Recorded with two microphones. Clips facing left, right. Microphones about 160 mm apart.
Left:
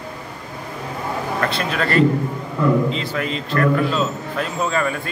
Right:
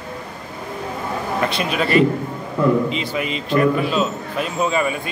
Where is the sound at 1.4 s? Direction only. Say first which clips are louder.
Right 2 dB; 15° right (ahead or behind).